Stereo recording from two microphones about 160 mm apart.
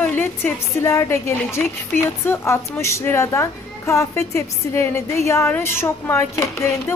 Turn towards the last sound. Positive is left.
turn(degrees=20)  # may be behind; listen again after turning